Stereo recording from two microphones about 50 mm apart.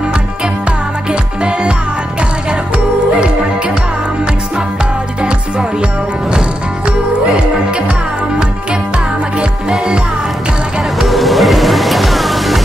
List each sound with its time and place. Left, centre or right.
5.2 s music: centre
9.4 s music: centre
11.0 s music: centre